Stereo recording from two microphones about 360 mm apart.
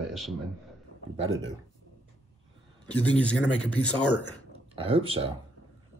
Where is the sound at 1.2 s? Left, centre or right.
Right.